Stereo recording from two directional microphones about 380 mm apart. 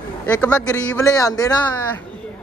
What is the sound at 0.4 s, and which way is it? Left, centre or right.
Speech, centre.